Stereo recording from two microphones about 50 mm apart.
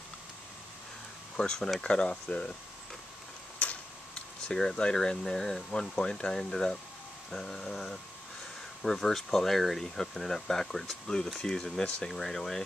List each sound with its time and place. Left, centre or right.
1.3 s speech: centre
3.5 s tick-tock: left
4.5 s speech: centre